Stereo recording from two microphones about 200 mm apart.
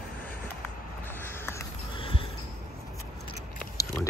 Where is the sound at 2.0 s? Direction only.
25° left (ahead or behind).